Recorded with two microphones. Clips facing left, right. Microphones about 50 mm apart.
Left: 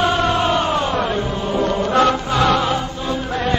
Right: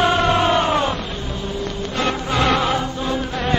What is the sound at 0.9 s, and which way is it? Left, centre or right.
Music, left.